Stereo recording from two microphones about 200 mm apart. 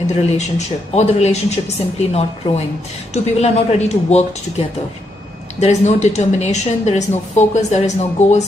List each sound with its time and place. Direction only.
0.0 s a woman's voice: 35° left (ahead or behind)
5.6 s a woman's voice: 35° left (ahead or behind)